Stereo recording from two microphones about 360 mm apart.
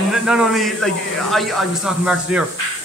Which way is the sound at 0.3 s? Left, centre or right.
Centre.